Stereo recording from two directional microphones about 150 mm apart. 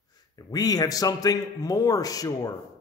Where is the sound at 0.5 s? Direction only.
25° left (ahead or behind).